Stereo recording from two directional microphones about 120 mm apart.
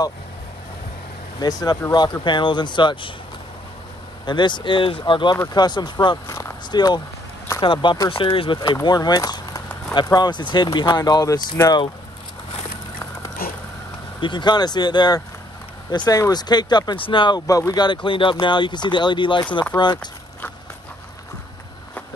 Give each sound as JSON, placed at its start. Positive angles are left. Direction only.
{"t": 1.4, "sound": "speech", "side_deg": 30}
{"t": 2.2, "sound": "speech", "side_deg": 40}
{"t": 4.3, "sound": "speech", "side_deg": 40}
{"t": 6.2, "sound": "a sound", "side_deg": 20}
{"t": 6.7, "sound": "speech", "side_deg": 35}
{"t": 14.2, "sound": "speech", "side_deg": 40}
{"t": 17.5, "sound": "speech", "side_deg": 30}